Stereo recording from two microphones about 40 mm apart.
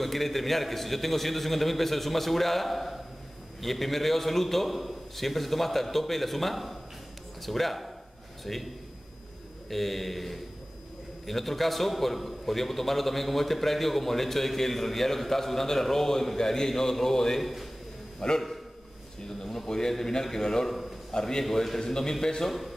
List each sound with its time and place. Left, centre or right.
0.0 s a man's voice: centre
9.7 s a man's voice: centre